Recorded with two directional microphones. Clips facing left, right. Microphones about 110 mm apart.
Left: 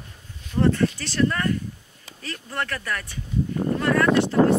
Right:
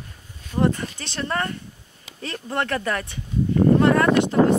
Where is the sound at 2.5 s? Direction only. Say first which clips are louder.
Right 5 dB; 25° right (ahead or behind).